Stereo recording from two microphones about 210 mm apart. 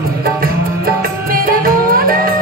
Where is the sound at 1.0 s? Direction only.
45° right (ahead or behind).